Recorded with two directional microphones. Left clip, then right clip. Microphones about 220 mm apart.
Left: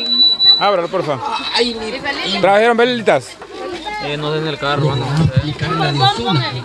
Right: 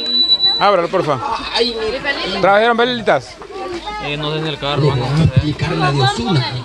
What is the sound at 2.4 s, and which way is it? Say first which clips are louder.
Speech: left 1 dB; 10° left (ahead or behind).